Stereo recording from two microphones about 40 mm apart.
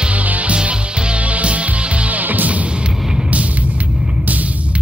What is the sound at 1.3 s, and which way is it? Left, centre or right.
Music, right.